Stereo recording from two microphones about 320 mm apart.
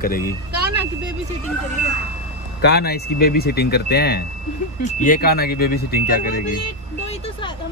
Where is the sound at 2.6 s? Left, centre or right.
Left.